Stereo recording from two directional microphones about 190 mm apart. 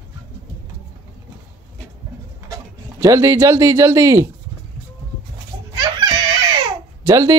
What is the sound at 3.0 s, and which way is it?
Speech, 15° right (ahead or behind).